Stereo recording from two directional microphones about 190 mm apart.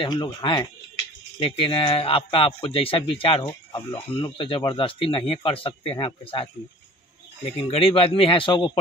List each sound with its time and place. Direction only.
0.0 s speech: 25° left (ahead or behind)
7.6 s speech: 30° left (ahead or behind)